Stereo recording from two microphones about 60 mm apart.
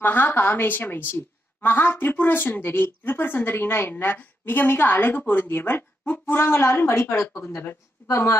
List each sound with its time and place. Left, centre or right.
0.0 s a woman's voice: left